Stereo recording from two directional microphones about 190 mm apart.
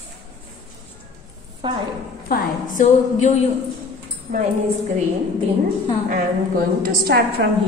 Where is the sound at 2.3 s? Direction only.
45° left (ahead or behind).